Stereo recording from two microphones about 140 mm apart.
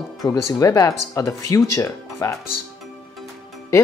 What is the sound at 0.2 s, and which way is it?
Speech, 25° left (ahead or behind).